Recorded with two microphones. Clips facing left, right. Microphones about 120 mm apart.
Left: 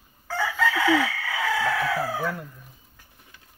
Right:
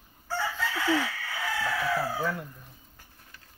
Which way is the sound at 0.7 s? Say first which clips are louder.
Left 4 dB; 90° left.